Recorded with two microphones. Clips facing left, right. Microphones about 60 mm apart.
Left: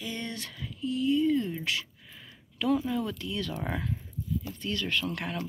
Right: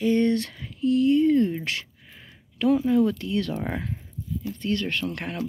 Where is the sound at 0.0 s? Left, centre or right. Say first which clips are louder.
Right 15 dB; right.